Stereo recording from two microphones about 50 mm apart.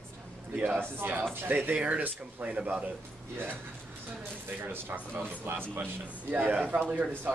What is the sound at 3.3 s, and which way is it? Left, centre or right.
Speech, right.